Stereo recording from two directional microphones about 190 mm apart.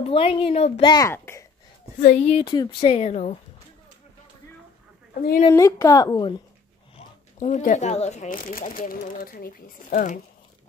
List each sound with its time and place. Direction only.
0.1 s a woman's voice: 30° left (ahead or behind)
0.9 s a woman's voice: 15° left (ahead or behind)
2.0 s a woman's voice: 40° left (ahead or behind)
5.1 s a woman's voice: 50° left (ahead or behind)
5.5 s a woman's voice: 15° left (ahead or behind)
7.3 s speech: 40° left (ahead or behind)